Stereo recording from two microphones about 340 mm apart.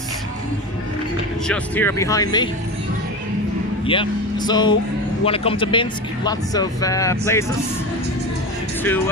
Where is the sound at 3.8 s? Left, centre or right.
Centre.